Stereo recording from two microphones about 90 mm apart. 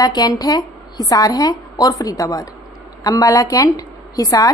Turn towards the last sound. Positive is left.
turn(degrees=40)  # may be behind; listen again after turning